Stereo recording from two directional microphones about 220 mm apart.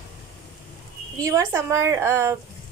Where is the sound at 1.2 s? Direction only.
15° right (ahead or behind).